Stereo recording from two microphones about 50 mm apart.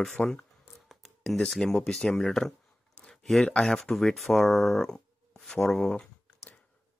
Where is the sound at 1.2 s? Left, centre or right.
Centre.